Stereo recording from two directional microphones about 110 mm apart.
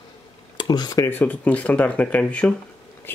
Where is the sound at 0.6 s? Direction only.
40° left (ahead or behind).